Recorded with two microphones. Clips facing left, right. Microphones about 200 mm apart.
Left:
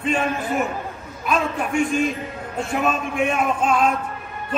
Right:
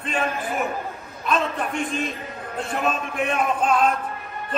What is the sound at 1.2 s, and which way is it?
A man's voice, centre (ahead or behind).